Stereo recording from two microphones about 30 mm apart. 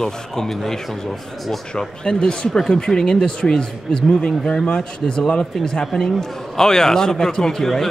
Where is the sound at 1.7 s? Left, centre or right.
Left.